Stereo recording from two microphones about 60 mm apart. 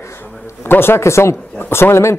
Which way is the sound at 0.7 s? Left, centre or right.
Left.